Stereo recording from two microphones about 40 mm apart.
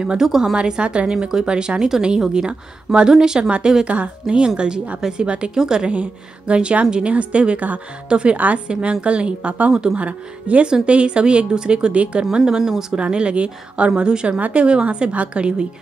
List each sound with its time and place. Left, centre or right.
0.2 s speech: centre
0.6 s a woman's voice: right
8.1 s a woman's voice: right
9.7 s a woman's voice: right
9.9 s a woman's voice: right
11.9 s a woman's voice: right
12.2 s speech: centre
13.0 s a woman's voice: right